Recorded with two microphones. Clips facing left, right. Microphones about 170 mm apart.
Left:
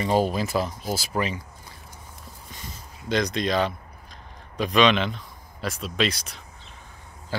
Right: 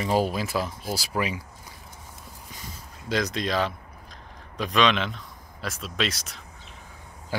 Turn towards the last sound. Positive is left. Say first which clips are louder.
# even
turn(degrees=-15)  # may be behind; listen again after turning